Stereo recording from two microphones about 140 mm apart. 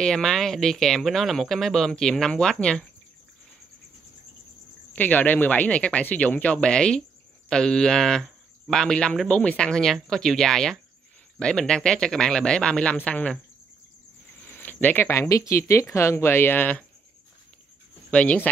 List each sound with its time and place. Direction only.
0.0 s speech: 5° left (ahead or behind)
4.9 s speech: 10° left (ahead or behind)
14.5 s speech: 10° left (ahead or behind)
18.1 s speech: 10° left (ahead or behind)